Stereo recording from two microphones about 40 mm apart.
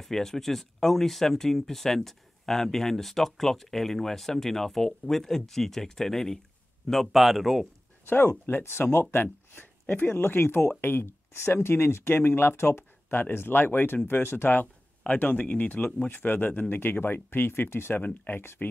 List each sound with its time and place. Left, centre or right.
0.0 s speech: centre
8.0 s speech: left
9.1 s speech: left
10.1 s speech: left
10.7 s speech: left
13.3 s speech: left
15.0 s speech: left
16.1 s speech: left
18.0 s speech: left